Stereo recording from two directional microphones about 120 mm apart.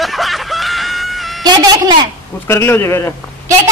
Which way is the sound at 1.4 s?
35° right (ahead or behind).